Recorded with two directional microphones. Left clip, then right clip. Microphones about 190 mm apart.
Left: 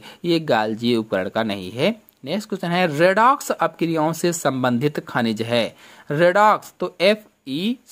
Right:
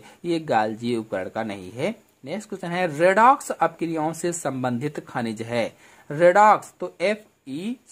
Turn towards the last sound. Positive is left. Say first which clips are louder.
# left 7 dB
turn(degrees=25)  # may be behind; listen again after turning